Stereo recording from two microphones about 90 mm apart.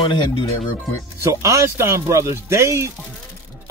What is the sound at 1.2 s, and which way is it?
Speech, 35° right (ahead or behind).